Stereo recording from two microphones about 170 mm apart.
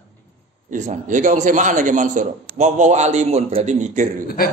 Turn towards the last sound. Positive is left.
turn(degrees=60)  # may be behind; listen again after turning